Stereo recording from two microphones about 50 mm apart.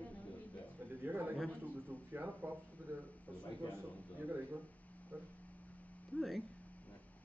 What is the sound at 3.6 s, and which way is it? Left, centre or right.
Speech, right.